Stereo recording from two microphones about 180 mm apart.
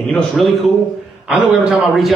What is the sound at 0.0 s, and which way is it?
A man's voice, centre (ahead or behind).